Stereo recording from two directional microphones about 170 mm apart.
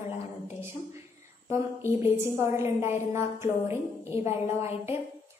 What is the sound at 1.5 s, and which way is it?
A woman's voice, 15° right (ahead or behind).